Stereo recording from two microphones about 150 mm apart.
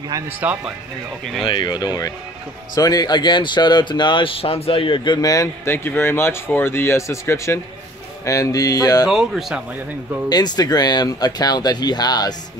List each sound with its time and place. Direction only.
0.4 s speech: 10° right (ahead or behind)
1.4 s speech: 30° left (ahead or behind)
9.1 s speech: centre (ahead or behind)
10.3 s speech: 25° left (ahead or behind)